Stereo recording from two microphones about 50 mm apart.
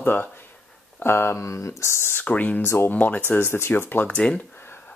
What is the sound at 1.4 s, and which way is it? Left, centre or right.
Speech, left.